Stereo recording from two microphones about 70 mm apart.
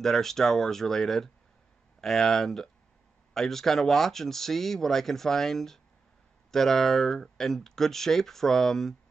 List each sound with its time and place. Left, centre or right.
0.0 s speech: centre